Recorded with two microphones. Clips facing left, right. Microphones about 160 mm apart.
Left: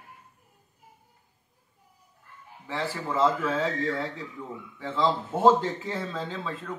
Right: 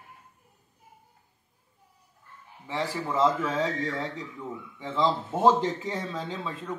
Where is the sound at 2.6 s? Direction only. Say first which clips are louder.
Right 1 dB; 15° right (ahead or behind).